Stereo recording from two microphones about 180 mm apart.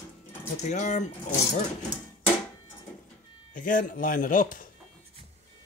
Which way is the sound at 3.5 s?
45° left (ahead or behind).